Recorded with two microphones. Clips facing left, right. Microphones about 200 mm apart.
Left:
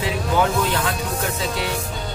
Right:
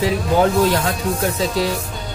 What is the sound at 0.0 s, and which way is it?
Speech, 40° right (ahead or behind).